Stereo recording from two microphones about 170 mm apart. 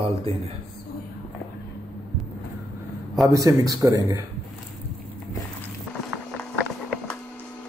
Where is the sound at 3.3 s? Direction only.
20° right (ahead or behind).